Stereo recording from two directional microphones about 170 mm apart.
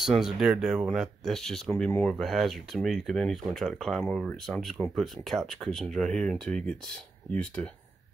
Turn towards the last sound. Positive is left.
turn(degrees=5)  # may be behind; listen again after turning